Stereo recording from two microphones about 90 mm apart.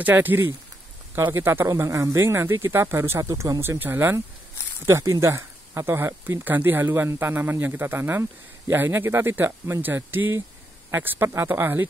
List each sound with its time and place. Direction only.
0.0 s speech: 20° right (ahead or behind)